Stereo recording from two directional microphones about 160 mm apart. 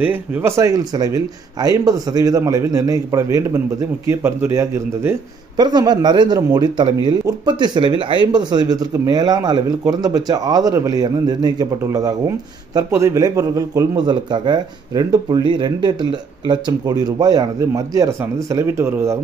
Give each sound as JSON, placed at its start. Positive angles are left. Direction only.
{"t": 0.0, "sound": "a man's voice", "side_deg": -10}